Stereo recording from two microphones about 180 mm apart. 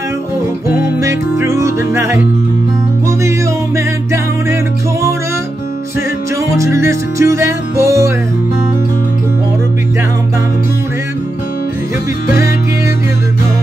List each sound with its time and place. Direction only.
1.0 s music: 15° right (ahead or behind)
6.5 s music: 15° right (ahead or behind)